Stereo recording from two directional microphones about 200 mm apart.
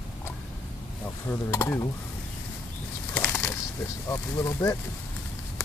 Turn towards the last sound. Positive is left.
turn(degrees=15)  # may be behind; listen again after turning